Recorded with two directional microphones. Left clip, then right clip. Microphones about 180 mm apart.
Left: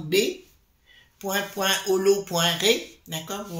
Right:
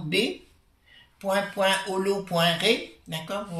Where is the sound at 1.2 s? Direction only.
45° left (ahead or behind).